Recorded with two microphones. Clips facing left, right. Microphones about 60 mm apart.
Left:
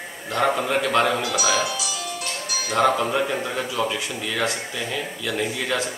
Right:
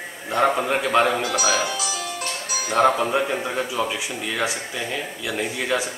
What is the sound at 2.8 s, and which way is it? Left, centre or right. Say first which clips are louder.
A man's voice: right 1 dB; centre.